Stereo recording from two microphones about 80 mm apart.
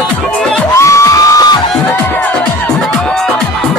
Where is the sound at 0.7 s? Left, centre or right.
Left.